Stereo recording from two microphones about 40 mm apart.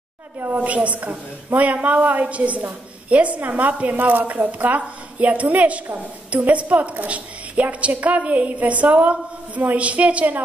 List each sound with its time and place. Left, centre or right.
0.6 s a woman's voice: right
3.9 s a woman's voice: right